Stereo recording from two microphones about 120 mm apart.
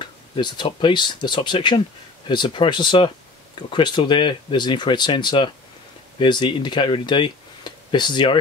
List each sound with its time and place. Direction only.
0.0 s speech: 40° left (ahead or behind)